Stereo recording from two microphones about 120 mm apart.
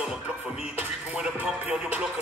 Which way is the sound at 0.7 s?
10° right (ahead or behind).